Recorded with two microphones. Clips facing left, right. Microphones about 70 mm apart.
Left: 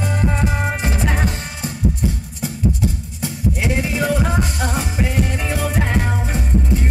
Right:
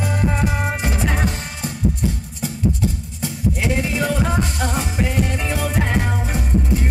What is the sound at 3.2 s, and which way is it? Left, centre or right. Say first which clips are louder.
Music: even; centre.